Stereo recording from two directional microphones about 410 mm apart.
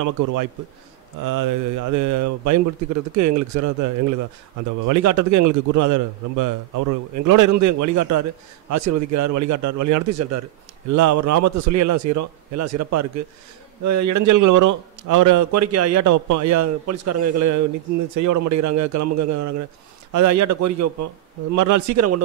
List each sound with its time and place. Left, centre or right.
0.0 s a man's voice: right